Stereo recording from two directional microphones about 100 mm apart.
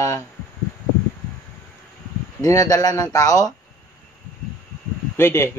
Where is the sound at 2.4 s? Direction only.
35° left (ahead or behind).